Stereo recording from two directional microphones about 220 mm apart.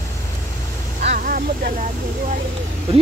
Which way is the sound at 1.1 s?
40° right (ahead or behind).